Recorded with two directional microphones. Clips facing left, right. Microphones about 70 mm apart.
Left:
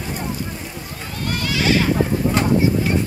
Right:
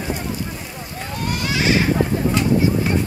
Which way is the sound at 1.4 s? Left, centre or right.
Right.